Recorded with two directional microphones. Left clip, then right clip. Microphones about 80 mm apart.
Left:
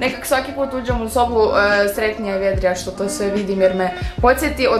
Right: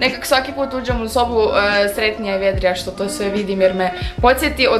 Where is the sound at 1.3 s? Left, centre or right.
Centre.